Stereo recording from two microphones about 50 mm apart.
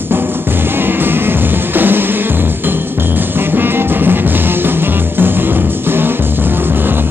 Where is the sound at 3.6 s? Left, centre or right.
Right.